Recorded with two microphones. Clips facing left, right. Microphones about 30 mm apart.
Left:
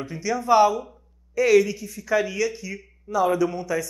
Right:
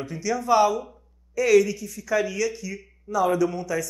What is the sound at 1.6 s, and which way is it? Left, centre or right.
Speech, centre.